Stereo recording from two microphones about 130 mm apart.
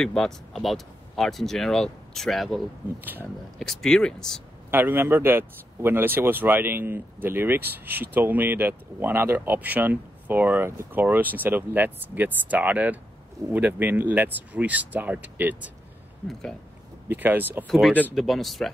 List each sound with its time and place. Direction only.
0.0 s speech: 5° left (ahead or behind)
3.0 s a man's voice: 15° right (ahead or behind)
3.5 s speech: 5° left (ahead or behind)
4.6 s a man's voice: 15° right (ahead or behind)
16.3 s speech: 5° left (ahead or behind)
17.1 s a man's voice: 15° right (ahead or behind)
17.6 s speech: centre (ahead or behind)